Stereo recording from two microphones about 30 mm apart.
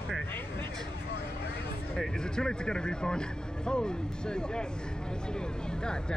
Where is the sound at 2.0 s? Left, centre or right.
Left.